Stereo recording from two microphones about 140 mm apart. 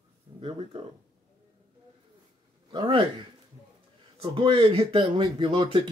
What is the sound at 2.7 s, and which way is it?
Speech, 35° right (ahead or behind).